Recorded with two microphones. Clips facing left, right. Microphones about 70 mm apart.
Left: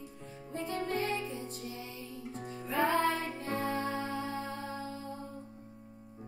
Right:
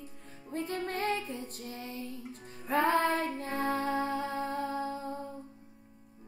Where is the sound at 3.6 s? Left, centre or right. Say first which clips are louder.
Right 5 dB; right.